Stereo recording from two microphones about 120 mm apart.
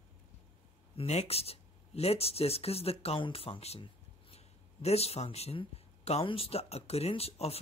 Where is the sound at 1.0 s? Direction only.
60° left (ahead or behind).